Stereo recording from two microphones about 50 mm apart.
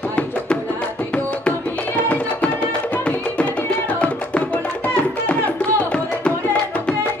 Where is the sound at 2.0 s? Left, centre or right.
Left.